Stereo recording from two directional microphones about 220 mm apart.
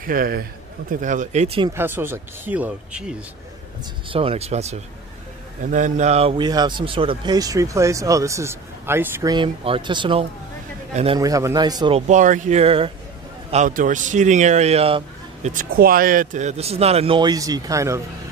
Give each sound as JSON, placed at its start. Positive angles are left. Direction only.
{"t": 0.0, "sound": "a man's voice", "side_deg": -40}
{"t": 1.7, "sound": "speech", "side_deg": -10}
{"t": 4.1, "sound": "a man's voice", "side_deg": -25}
{"t": 11.1, "sound": "speech", "side_deg": -15}
{"t": 12.1, "sound": "a man's voice", "side_deg": -35}
{"t": 15.5, "sound": "a man's voice", "side_deg": -40}